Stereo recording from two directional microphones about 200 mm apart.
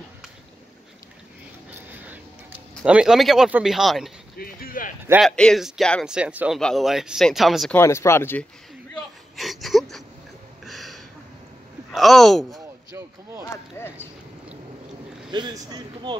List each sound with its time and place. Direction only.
1.7 s a sound: 10° right (ahead or behind)
2.7 s speech: 5° right (ahead or behind)
4.4 s clip-clop: 45° left (ahead or behind)
5.2 s speech: 5° left (ahead or behind)
7.7 s speech: 15° left (ahead or behind)
9.4 s a sound: centre (ahead or behind)
11.9 s speech: centre (ahead or behind)
13.7 s speech: 10° left (ahead or behind)
15.3 s speech: 20° right (ahead or behind)